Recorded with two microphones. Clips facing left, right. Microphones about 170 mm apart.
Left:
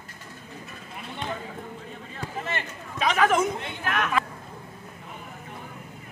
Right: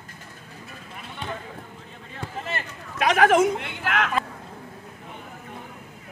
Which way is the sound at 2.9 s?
75° right (ahead or behind).